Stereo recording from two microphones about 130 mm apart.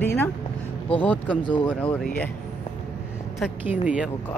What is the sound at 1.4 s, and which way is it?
Speech, 35° left (ahead or behind).